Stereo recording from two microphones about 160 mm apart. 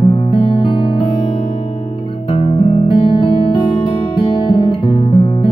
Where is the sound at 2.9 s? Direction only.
35° left (ahead or behind).